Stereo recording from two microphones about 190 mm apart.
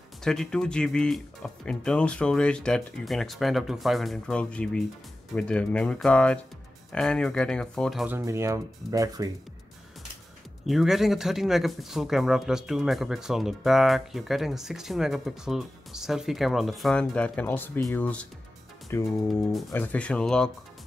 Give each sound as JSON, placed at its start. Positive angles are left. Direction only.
{"t": 0.2, "sound": "speech", "side_deg": 5}
{"t": 8.2, "sound": "speech", "side_deg": -15}
{"t": 10.7, "sound": "speech", "side_deg": 0}